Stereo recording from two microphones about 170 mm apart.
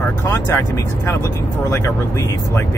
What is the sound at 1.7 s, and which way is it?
Speech, 15° left (ahead or behind).